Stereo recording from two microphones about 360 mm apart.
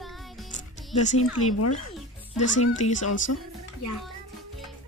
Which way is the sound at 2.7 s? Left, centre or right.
Centre.